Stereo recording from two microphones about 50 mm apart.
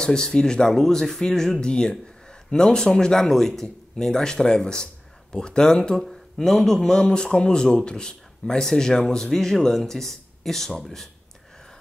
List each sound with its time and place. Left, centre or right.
0.0 s speech: centre